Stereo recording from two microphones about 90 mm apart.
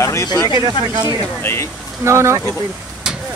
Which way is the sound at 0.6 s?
55° right (ahead or behind).